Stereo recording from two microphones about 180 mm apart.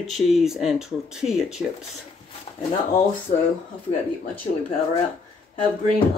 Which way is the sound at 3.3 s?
50° left (ahead or behind).